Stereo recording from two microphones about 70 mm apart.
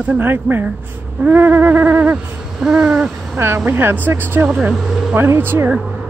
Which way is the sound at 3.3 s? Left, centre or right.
Right.